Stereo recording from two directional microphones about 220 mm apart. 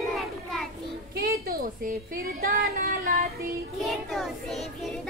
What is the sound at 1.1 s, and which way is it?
A woman's voice, 45° right (ahead or behind).